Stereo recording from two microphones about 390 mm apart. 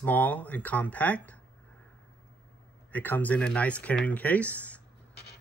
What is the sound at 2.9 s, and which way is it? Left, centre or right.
Speech, centre.